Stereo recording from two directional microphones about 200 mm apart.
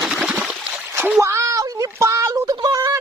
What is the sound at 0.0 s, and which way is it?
Splash, 5° right (ahead or behind).